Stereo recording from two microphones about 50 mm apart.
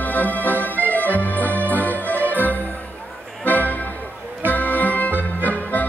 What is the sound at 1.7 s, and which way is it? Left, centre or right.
Music, left.